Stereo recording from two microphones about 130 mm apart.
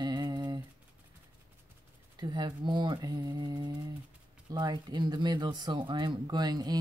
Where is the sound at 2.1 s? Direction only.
35° right (ahead or behind).